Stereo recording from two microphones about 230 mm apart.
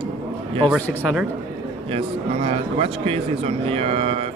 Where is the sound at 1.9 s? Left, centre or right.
Right.